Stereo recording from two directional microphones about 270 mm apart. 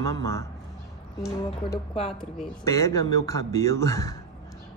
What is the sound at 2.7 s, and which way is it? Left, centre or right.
Speech, centre.